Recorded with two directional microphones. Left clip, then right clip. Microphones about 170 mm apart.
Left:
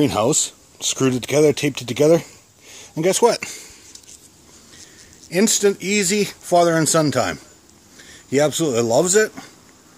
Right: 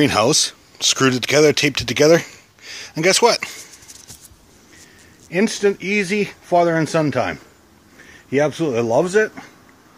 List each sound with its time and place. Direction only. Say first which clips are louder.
0.0 s speech: right 3 dB; 5° left (ahead or behind)
5.3 s speech: left 1 dB; 20° left (ahead or behind)
9.0 s speech: even; 15° left (ahead or behind)